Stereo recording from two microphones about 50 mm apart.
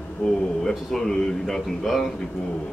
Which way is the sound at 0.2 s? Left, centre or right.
Left.